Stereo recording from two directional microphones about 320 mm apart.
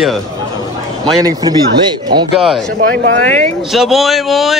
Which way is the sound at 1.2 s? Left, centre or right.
Centre.